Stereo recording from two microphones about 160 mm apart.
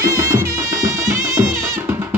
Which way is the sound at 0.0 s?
20° right (ahead or behind).